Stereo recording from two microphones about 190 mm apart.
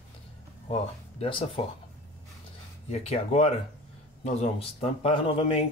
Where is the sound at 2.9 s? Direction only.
35° left (ahead or behind).